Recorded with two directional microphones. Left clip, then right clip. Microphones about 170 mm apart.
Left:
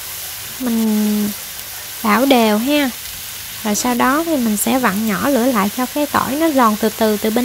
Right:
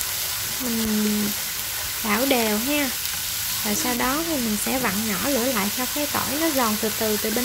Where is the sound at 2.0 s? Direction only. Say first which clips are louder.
Left 9 dB; 50° left (ahead or behind).